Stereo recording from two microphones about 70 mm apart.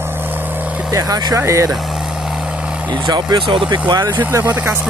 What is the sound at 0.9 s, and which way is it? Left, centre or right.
Speech, right.